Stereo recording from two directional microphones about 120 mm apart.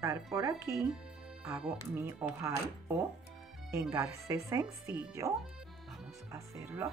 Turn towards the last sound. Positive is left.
turn(degrees=-20)  # may be behind; listen again after turning